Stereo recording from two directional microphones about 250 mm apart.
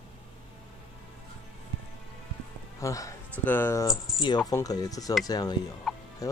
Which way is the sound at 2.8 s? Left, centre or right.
Centre.